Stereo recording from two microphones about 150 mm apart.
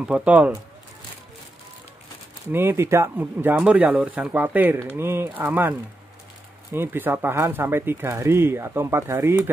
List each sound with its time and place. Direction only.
0.1 s speech: 10° right (ahead or behind)
2.5 s speech: 15° right (ahead or behind)